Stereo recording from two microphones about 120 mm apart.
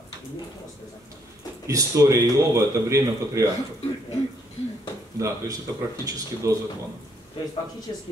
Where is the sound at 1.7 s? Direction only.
25° right (ahead or behind).